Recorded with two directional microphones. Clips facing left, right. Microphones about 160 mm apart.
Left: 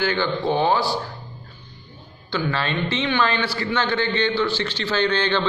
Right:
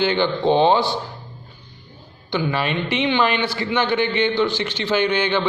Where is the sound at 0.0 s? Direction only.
20° right (ahead or behind).